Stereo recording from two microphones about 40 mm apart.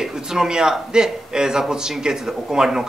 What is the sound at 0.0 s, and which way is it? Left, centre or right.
A man's voice, centre.